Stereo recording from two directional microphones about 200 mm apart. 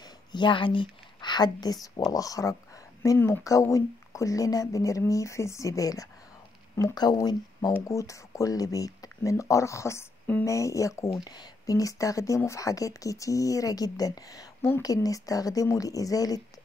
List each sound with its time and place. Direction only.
0.0 s a woman's voice: 20° left (ahead or behind)